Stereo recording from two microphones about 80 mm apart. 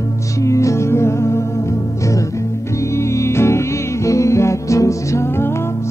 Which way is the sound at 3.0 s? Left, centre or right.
Left.